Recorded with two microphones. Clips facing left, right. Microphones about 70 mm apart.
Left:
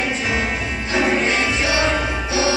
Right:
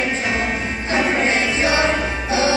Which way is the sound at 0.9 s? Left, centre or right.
Right.